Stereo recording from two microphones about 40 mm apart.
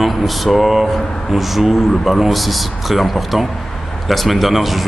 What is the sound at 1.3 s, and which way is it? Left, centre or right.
Speech, centre.